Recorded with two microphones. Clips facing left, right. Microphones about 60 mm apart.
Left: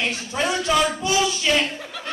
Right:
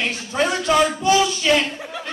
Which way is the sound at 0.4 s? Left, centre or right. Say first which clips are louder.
Right 3 dB; right.